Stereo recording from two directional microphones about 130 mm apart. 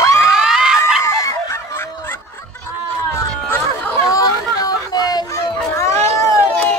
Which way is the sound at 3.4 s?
15° left (ahead or behind).